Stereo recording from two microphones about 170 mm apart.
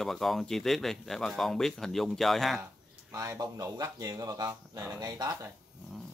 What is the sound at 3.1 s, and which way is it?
Speech, 20° right (ahead or behind).